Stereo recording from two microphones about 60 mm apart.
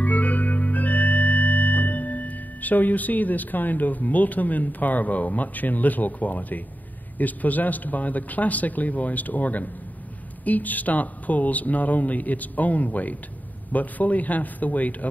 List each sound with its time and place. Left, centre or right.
0.0 s organ: left
7.2 s speech: left